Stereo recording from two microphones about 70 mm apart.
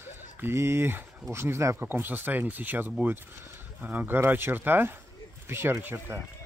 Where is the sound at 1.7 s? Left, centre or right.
Right.